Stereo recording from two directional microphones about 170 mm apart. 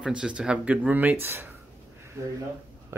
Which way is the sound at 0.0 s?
5° right (ahead or behind).